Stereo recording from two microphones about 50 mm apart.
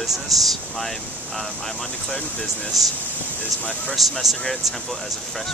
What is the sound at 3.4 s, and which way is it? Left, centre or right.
Speech, left.